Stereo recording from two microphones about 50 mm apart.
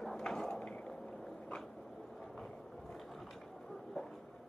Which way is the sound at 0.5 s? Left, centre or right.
Left.